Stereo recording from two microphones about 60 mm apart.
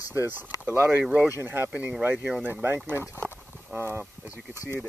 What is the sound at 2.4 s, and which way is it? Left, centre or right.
Speech, right.